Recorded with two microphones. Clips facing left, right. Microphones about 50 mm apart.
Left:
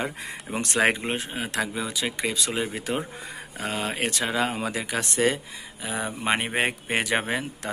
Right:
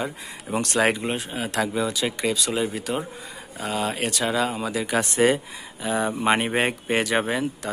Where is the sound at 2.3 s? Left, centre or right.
Left.